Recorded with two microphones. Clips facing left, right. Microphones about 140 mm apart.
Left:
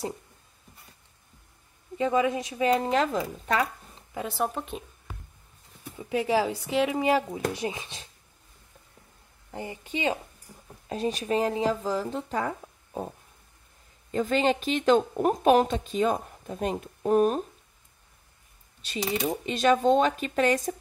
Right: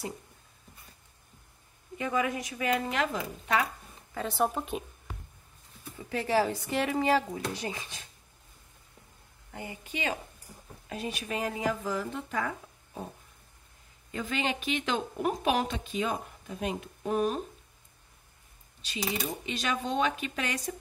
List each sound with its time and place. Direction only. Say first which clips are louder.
2.0 s speech: left 6 dB; 25° left (ahead or behind)
4.1 s speech: even; 10° left (ahead or behind)
5.9 s speech: left 2 dB; 15° left (ahead or behind)
9.5 s speech: left 5 dB; 30° left (ahead or behind)
14.1 s speech: left 8 dB; 40° left (ahead or behind)
18.9 s speech: left 5 dB; 50° left (ahead or behind)